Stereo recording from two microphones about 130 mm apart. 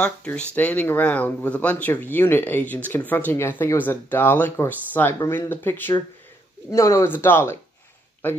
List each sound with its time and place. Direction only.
0.0 s a man's voice: 10° left (ahead or behind)